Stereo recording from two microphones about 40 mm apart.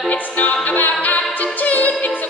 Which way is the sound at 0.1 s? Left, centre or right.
Left.